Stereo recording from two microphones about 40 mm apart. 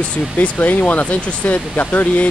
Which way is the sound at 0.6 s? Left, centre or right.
Left.